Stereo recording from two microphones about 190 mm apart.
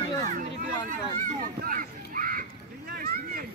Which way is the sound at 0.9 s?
45° right (ahead or behind).